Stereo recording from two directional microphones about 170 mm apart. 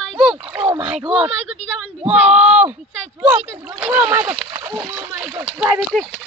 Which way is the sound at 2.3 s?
5° right (ahead or behind).